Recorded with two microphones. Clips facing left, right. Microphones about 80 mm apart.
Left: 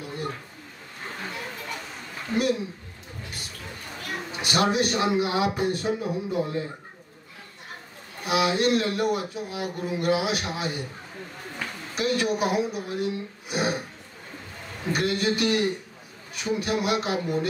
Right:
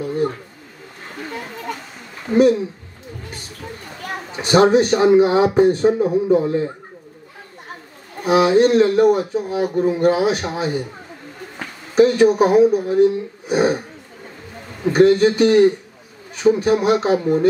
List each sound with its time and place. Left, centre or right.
2.3 s speech: right
4.4 s speech: right
8.2 s speech: right
14.9 s speech: right